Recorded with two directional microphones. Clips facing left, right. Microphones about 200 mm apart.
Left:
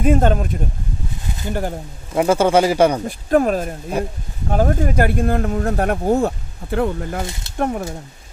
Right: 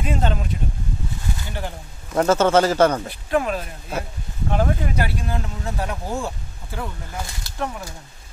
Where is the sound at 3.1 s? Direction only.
45° left (ahead or behind); by 7.2 s 60° left (ahead or behind).